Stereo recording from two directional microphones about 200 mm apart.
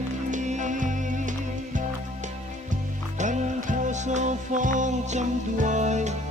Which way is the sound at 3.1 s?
35° right (ahead or behind).